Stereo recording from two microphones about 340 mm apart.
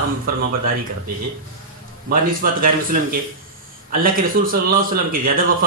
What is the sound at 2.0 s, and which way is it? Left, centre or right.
A man's voice, right.